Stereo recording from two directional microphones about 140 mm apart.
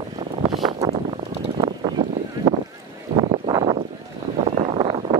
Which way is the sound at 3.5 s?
30° right (ahead or behind).